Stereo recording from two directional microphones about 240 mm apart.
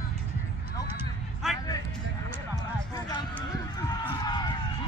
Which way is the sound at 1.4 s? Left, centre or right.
Centre.